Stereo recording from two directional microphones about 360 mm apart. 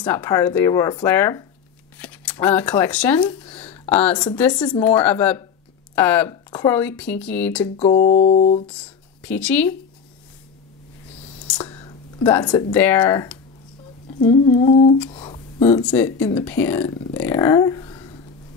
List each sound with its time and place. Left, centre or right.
0.0 s speech: centre
7.7 s music: centre
8.6 s speech: centre
11.4 s a sound: centre
12.7 s speech: centre
15.0 s a sound: centre
15.9 s speech: centre